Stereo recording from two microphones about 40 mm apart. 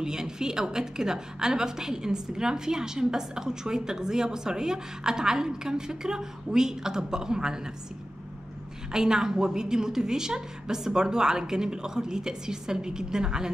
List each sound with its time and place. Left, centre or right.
0.0 s a woman's voice: centre
8.9 s a woman's voice: centre